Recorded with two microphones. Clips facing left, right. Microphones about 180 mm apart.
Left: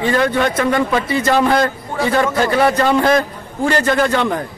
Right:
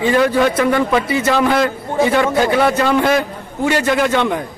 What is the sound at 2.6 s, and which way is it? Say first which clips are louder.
A man's voice: even; centre (ahead or behind).